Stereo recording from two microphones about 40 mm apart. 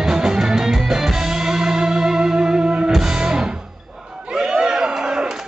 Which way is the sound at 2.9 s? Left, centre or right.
Centre.